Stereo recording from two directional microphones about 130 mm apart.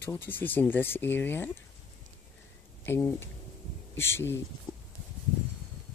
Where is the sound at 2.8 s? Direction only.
20° left (ahead or behind).